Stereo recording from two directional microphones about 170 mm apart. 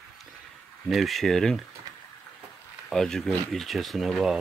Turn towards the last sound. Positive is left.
turn(degrees=0)  # may be behind; listen again after turning